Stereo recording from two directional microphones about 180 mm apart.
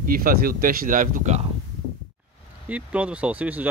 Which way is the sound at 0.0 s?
50° right (ahead or behind).